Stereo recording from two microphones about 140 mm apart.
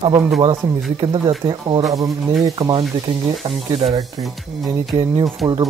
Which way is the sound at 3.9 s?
Centre (ahead or behind).